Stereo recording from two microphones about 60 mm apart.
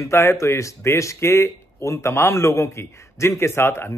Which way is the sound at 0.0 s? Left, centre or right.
Left.